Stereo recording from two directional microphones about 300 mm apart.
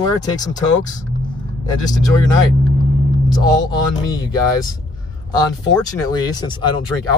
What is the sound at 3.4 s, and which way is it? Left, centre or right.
Speech, centre.